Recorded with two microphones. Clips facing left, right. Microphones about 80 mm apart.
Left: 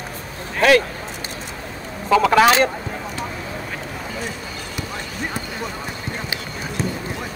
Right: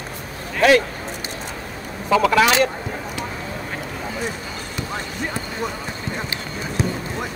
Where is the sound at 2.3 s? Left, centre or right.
Left.